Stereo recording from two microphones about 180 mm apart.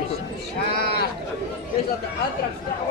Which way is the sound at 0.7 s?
60° left (ahead or behind).